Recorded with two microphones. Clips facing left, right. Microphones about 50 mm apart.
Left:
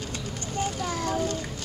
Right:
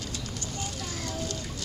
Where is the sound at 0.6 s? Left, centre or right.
Left.